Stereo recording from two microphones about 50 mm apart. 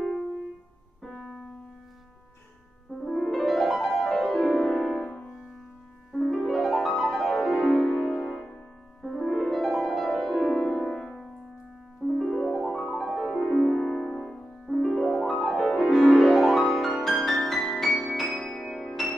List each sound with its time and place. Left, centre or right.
1.0 s piano: centre
3.1 s music: centre
6.1 s music: centre
12.2 s piano: centre
12.6 s music: centre